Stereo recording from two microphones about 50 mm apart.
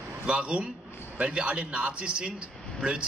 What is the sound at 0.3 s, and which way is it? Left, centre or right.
Speech, right.